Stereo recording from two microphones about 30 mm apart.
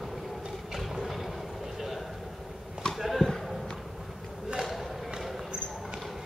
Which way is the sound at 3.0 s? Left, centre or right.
Centre.